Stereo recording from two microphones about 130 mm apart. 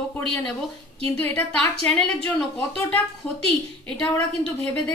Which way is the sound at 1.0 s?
15° left (ahead or behind).